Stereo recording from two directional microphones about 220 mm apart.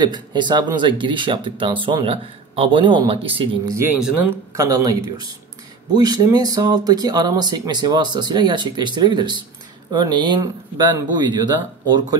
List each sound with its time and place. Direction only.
0.0 s speech: 20° right (ahead or behind)
3.7 s speech: 10° right (ahead or behind)
5.9 s speech: 20° right (ahead or behind)